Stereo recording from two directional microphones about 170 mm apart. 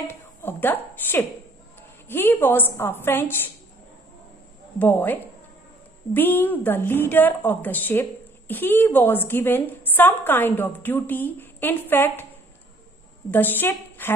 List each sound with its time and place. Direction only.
0.1 s a sound: 15° left (ahead or behind)
2.0 s a woman's voice: 10° left (ahead or behind)
4.7 s a woman's voice: 10° left (ahead or behind)
13.3 s a woman's voice: 10° left (ahead or behind)